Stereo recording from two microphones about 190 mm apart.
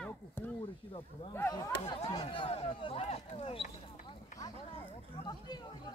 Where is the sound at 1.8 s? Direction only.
30° left (ahead or behind).